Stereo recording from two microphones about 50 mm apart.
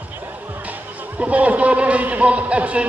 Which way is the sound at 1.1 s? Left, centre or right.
Right.